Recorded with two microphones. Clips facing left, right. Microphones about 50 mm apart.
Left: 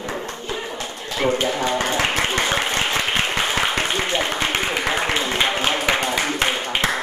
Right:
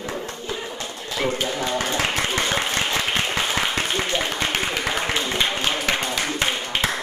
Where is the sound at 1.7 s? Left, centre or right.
Left.